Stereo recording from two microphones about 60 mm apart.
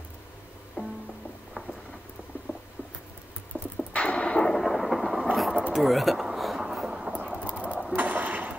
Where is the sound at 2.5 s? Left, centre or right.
Right.